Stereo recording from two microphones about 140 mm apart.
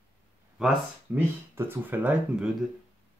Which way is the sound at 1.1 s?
15° right (ahead or behind).